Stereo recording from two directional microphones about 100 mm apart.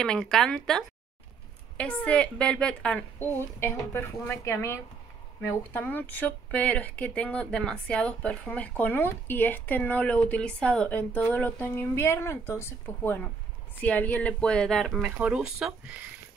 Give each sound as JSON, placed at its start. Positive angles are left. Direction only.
{"t": 0.0, "sound": "speech", "side_deg": 5}
{"t": 3.2, "sound": "speech", "side_deg": 25}